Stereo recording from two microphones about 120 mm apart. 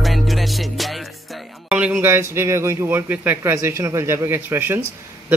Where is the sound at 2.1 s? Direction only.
20° right (ahead or behind).